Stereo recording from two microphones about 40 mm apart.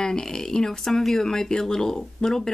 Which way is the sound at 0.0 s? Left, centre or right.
Centre.